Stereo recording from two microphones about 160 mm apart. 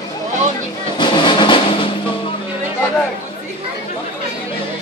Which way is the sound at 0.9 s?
30° left (ahead or behind).